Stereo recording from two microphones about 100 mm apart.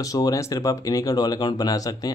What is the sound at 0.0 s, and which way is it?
Speech, 35° left (ahead or behind).